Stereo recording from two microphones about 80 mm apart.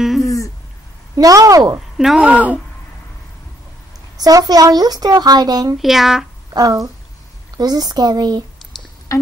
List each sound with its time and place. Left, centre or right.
0.2 s a sound: left
1.1 s speech: right
2.0 s speech: centre
4.2 s speech: right
5.8 s speech: centre
6.5 s speech: right